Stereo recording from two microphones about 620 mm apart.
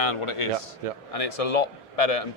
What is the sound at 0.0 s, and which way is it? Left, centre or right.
Speech, left.